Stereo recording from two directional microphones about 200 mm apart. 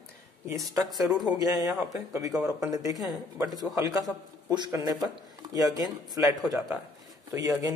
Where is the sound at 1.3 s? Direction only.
20° right (ahead or behind).